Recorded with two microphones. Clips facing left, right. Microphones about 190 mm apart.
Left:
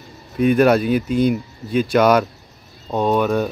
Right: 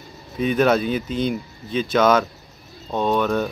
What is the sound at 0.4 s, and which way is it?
Speech, 10° left (ahead or behind).